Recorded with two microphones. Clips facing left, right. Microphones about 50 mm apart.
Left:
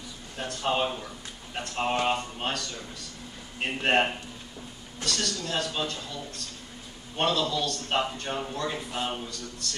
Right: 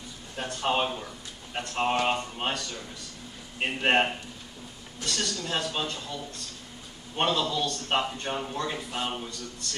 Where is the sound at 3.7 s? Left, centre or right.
Centre.